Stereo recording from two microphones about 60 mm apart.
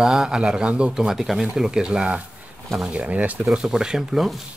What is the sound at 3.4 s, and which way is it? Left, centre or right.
Speech, centre.